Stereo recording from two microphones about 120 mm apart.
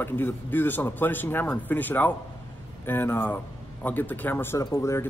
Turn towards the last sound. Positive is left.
turn(degrees=25)  # may be behind; listen again after turning